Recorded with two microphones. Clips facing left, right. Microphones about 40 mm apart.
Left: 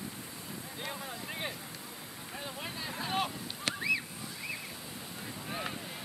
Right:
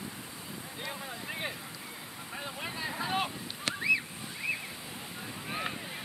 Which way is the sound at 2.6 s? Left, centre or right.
Centre.